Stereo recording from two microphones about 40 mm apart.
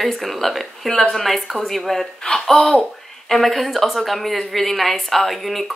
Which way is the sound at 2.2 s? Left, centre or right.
Centre.